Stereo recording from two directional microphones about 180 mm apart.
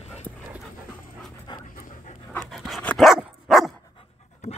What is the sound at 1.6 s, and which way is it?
Pant, 50° left (ahead or behind).